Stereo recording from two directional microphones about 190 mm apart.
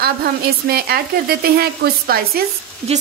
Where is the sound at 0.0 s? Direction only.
55° right (ahead or behind).